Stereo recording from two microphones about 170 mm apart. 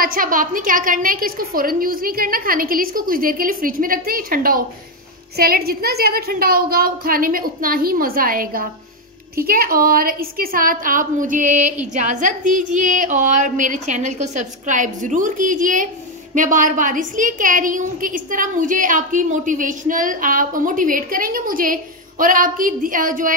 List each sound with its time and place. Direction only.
0.0 s a woman's voice: 55° right (ahead or behind)